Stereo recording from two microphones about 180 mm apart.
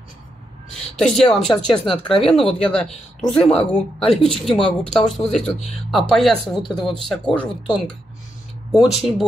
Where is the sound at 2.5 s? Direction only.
5° left (ahead or behind).